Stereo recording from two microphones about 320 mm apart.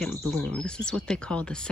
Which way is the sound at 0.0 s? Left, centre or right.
Centre.